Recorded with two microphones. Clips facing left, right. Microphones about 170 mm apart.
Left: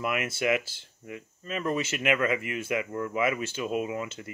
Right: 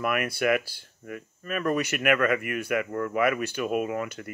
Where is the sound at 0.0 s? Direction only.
20° left (ahead or behind).